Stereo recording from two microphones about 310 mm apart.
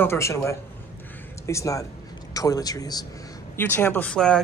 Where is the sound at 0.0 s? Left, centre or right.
Centre.